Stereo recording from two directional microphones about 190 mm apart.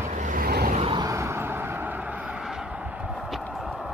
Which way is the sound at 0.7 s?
25° right (ahead or behind).